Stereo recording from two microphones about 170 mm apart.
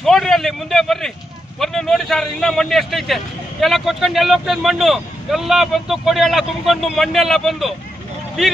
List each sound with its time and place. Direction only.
0.0 s speech: centre (ahead or behind)